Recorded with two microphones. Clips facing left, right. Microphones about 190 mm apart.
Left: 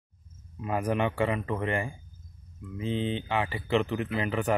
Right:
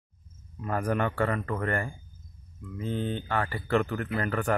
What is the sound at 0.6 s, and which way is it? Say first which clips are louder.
Speech: even; 10° left (ahead or behind).